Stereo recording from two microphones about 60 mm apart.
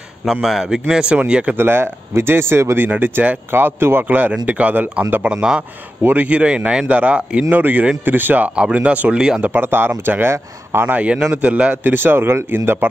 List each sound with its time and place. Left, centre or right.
0.2 s a man's voice: centre
1.0 s speech: centre
1.5 s speech: right
6.0 s speech: right
9.1 s a man's voice: centre
9.4 s speech: right
11.0 s a man's voice: centre
11.7 s speech: right